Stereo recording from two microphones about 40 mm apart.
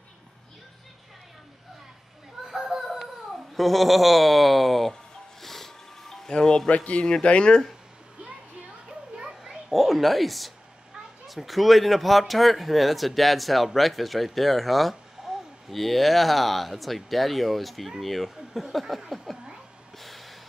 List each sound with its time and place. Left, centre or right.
2.4 s children playing: centre
3.5 s speech: centre
5.4 s ice cream truck: centre
6.3 s speech: centre
6.7 s speech: left
9.3 s a sound: centre
11.2 s speech: centre
20.0 s snort: centre